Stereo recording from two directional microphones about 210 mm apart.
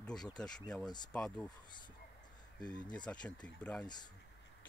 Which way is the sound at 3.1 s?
5° left (ahead or behind).